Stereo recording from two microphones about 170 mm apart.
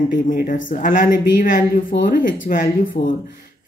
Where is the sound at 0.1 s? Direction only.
55° left (ahead or behind).